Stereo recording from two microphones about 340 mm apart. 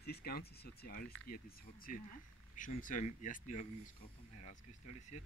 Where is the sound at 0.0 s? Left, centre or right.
Left.